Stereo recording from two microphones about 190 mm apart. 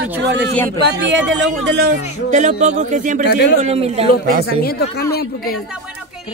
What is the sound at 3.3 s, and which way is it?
Speech, 60° left (ahead or behind).